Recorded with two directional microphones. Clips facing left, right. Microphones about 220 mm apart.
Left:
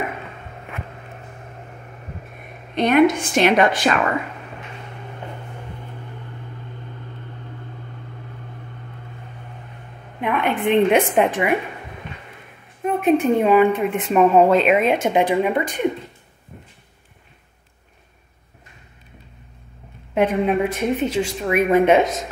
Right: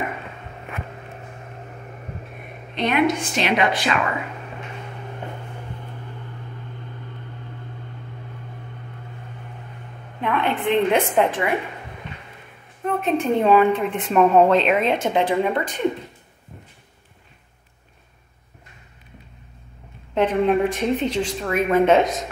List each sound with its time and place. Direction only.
2.7 s a woman's voice: 45° left (ahead or behind)
10.2 s a woman's voice: 15° left (ahead or behind)
12.8 s a woman's voice: 15° left (ahead or behind)
20.2 s a woman's voice: 10° left (ahead or behind)